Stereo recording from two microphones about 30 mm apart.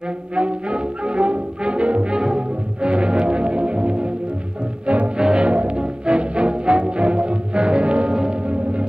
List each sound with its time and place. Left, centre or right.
0.4 s brass instrument: right
2.1 s music: right
5.1 s music: right
8.1 s music: right